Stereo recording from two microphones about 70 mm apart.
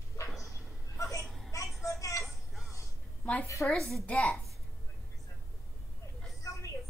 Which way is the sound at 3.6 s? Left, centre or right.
Centre.